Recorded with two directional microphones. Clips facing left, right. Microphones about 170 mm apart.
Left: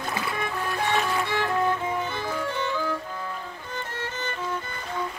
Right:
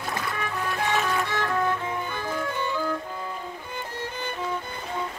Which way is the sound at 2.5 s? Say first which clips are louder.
Even; 10° right (ahead or behind).